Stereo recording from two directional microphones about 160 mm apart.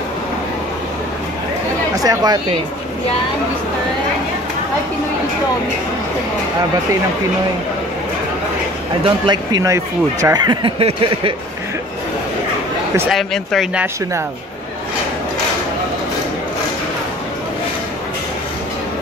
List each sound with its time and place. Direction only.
2.0 s speech: 25° right (ahead or behind)
9.0 s speech: 30° right (ahead or behind)
13.1 s speech: centre (ahead or behind)